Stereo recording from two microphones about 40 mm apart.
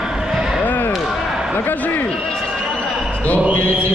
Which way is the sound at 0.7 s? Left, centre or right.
Left.